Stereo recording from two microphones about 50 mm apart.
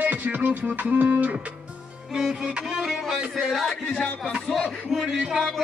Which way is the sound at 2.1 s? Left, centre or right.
Centre.